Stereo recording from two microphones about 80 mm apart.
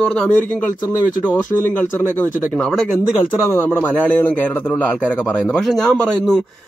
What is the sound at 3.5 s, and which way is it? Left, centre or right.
A man's voice, left.